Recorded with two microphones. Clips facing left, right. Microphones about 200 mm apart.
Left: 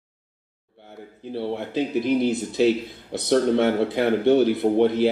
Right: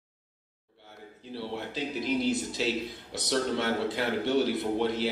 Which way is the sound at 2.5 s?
55° left (ahead or behind).